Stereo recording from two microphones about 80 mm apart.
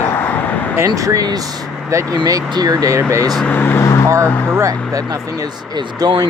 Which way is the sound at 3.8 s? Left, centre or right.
Left.